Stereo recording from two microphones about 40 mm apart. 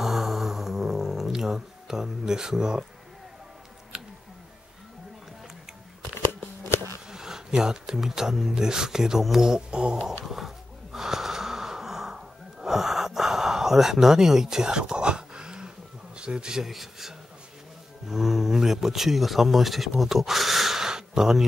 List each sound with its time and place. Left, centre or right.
0.0 s a sound: centre
7.1 s speech: centre
10.2 s wheeze: centre; by 15.7 s right
16.2 s speech: centre
16.6 s speech: centre